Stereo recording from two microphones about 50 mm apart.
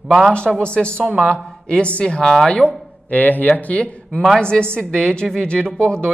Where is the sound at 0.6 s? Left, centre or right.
Left.